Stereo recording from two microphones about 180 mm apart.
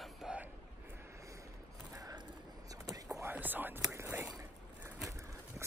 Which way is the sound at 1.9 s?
20° right (ahead or behind).